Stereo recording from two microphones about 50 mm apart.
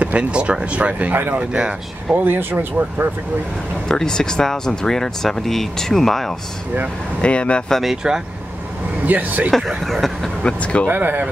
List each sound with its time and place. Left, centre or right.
0.0 s speech: right
2.1 s speech: right
3.9 s speech: centre
7.2 s speech: left
7.8 s speech: centre
9.0 s speech: right
9.8 s speech: centre
10.4 s speech: left
10.9 s speech: right